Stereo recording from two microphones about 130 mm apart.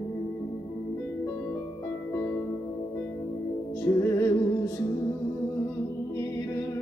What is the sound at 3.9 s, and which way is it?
Music, 20° left (ahead or behind).